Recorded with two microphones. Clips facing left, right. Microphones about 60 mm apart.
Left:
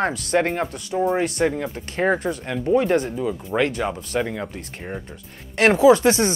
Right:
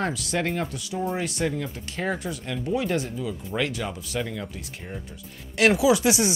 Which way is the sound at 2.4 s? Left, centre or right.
Left.